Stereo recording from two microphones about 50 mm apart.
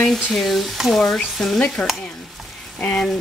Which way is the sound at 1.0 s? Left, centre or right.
Centre.